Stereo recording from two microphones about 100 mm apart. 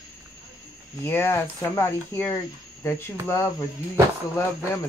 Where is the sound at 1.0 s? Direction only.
20° left (ahead or behind).